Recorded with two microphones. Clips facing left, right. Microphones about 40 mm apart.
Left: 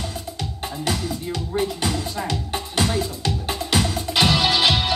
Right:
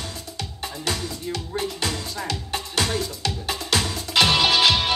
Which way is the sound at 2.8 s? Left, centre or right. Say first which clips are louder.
Left 3 dB; left.